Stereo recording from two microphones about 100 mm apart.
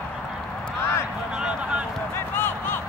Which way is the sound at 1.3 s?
10° right (ahead or behind).